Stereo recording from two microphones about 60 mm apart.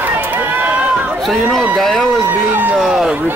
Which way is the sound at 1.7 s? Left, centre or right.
Centre.